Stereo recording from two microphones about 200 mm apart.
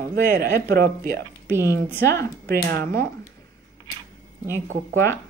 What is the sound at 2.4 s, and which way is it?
Speech, 50° right (ahead or behind).